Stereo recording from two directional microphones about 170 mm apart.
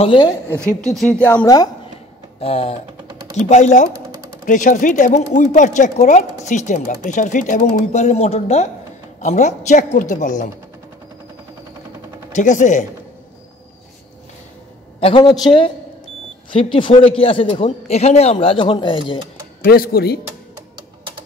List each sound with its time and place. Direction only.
0.0 s a woman's voice: 30° left (ahead or behind)
0.5 s a woman's voice: 5° left (ahead or behind)
1.4 s a woman's voice: 25° left (ahead or behind)
2.4 s a man's voice: 35° left (ahead or behind)
3.1 s a sound: 25° right (ahead or behind)
3.3 s speech: 45° left (ahead or behind)
12.4 s speech: 45° left (ahead or behind)
15.0 s a man's voice: 30° left (ahead or behind)
17.2 s a man's voice: 30° left (ahead or behind)
19.6 s speech: 60° left (ahead or behind)